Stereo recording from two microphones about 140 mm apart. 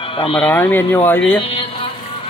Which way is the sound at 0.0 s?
40° left (ahead or behind).